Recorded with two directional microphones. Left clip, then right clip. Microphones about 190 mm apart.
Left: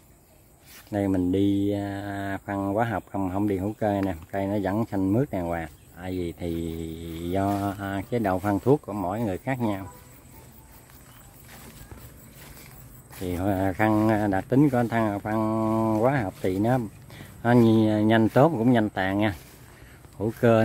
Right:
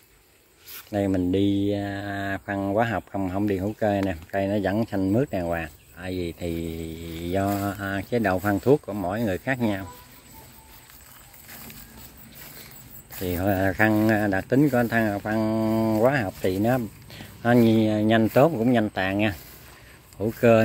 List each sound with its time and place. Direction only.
0.9 s speech: 15° left (ahead or behind)
13.2 s speech: 10° left (ahead or behind)